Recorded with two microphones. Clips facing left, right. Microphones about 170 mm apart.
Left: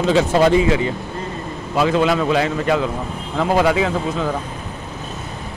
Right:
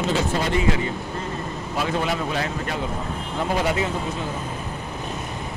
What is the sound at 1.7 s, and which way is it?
A man's voice, 90° left.